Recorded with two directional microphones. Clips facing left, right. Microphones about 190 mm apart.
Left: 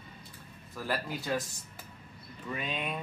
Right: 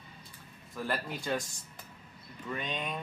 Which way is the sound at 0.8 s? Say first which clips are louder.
Left 1 dB; centre (ahead or behind).